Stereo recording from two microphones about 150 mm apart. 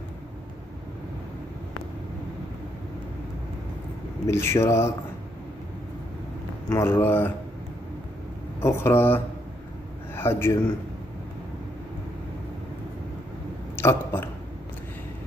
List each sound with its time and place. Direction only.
4.3 s speech: 20° left (ahead or behind)
6.7 s speech: 15° left (ahead or behind)
8.5 s a man's voice: 15° left (ahead or behind)
13.7 s speech: 15° left (ahead or behind)